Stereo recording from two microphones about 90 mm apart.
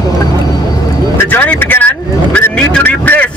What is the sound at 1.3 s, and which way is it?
Speech, 20° left (ahead or behind).